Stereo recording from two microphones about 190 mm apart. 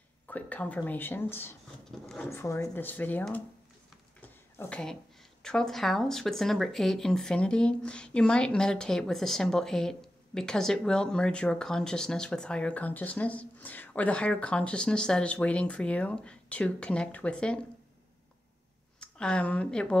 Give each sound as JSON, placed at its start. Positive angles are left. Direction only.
{"t": 0.3, "sound": "speech", "side_deg": 10}
{"t": 2.2, "sound": "speech", "side_deg": 15}
{"t": 4.6, "sound": "speech", "side_deg": 5}
{"t": 18.9, "sound": "speech", "side_deg": 5}